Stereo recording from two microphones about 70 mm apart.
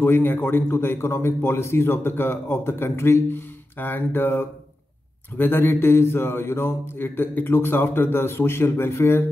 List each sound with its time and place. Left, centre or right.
0.0 s a man's voice: left